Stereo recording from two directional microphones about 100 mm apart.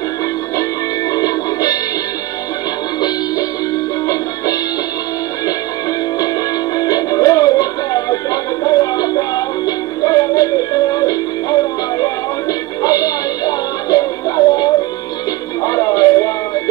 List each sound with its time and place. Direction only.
1.1 s music: 40° left (ahead or behind)
6.8 s music: 40° left (ahead or behind)